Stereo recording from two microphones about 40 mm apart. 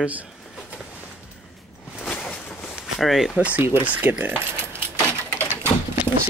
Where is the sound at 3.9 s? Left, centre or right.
Right.